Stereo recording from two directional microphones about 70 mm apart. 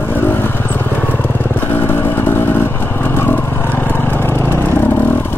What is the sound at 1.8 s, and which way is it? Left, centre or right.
Vehicle, left.